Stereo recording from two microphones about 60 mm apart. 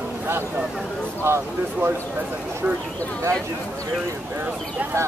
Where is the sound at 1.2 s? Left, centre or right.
Right.